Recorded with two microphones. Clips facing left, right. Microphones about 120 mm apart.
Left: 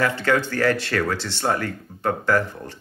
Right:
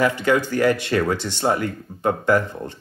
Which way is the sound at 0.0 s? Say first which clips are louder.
Right 2 dB; 15° right (ahead or behind).